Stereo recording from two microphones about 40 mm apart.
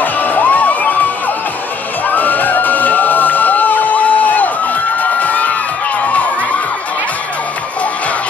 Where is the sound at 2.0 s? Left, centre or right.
Left.